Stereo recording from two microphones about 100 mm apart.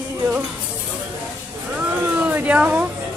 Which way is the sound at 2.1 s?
15° right (ahead or behind).